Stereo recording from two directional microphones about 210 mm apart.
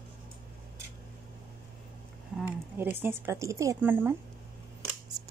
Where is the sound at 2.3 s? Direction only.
10° right (ahead or behind).